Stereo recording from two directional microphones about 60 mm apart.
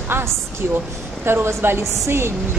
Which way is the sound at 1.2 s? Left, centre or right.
Right.